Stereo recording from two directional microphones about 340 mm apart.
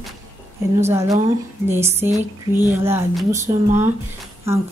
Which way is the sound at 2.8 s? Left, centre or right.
Centre.